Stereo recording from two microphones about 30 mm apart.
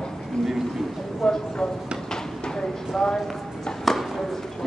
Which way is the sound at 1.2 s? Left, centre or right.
Centre.